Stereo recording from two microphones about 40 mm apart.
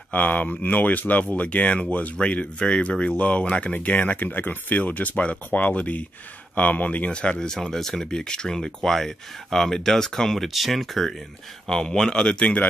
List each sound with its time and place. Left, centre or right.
0.1 s speech: left
4.2 s speech: left
7.1 s speech: left; by 8.1 s centre
8.1 s speech: centre
10.5 s speech: centre
11.7 s speech: centre